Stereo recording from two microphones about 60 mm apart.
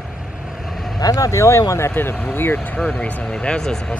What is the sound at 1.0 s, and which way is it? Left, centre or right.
Speech, left.